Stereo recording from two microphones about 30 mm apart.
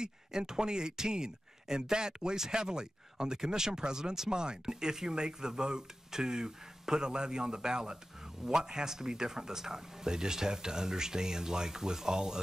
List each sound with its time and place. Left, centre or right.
0.0 s speech: right